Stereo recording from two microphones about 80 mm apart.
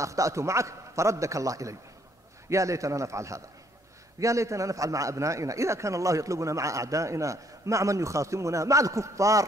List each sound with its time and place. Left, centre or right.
0.0 s a man's voice: right